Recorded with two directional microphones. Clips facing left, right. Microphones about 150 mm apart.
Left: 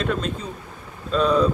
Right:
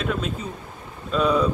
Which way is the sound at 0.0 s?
5° right (ahead or behind).